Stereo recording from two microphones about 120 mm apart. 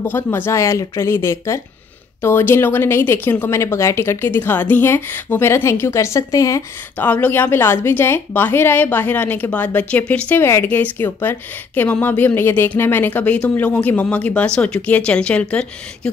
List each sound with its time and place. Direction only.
0.0 s speech: 15° left (ahead or behind)
7.0 s a woman's voice: 15° left (ahead or behind)